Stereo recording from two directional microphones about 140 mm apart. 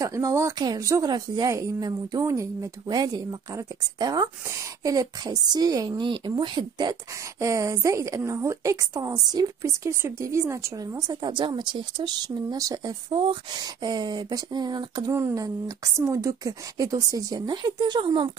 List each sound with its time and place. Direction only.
0.0 s speech: 20° right (ahead or behind)